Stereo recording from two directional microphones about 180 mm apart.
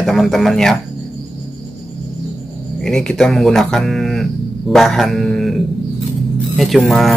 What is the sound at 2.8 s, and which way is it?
Speech, 5° left (ahead or behind).